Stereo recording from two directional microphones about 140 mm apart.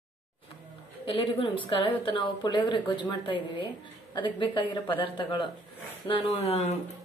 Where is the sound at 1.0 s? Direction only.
40° left (ahead or behind).